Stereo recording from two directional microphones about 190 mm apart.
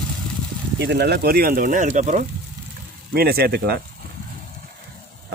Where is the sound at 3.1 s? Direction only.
55° right (ahead or behind).